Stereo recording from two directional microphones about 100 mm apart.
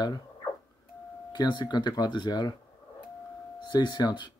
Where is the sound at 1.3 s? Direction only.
50° left (ahead or behind).